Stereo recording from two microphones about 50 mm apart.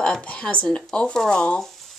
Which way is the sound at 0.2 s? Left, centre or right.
Left.